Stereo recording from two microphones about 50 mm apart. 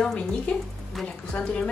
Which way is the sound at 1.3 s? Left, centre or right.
Left.